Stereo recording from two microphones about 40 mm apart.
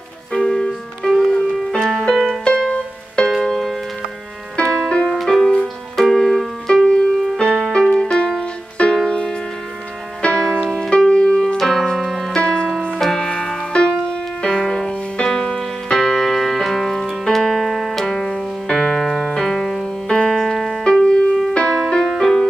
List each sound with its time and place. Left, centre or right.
0.3 s music: centre
2.4 s music: left
3.3 s music: centre
4.7 s music: centre
5.1 s music: centre
6.8 s music: centre
8.2 s music: left
11.5 s keyboard: centre
12.0 s music: centre
13.0 s music: centre
20.2 s keyboard: centre
21.0 s music: centre
21.6 s music: centre